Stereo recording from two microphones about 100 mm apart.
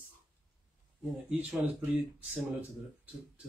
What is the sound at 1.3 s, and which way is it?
Speech, 15° right (ahead or behind).